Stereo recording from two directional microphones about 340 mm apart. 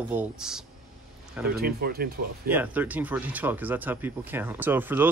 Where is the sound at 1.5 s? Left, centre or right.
Right.